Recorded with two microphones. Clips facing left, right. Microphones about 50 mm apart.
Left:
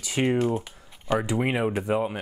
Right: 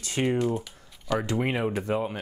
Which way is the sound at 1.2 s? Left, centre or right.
Centre.